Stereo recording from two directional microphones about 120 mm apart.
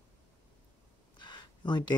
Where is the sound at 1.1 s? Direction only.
40° left (ahead or behind).